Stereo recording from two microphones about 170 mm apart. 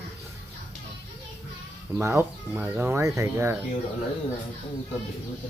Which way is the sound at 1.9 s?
15° right (ahead or behind).